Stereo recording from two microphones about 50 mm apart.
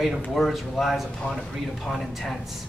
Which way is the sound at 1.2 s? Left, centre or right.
Centre.